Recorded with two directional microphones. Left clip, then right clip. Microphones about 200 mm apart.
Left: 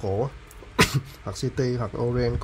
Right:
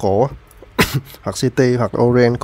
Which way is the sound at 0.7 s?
35° right (ahead or behind).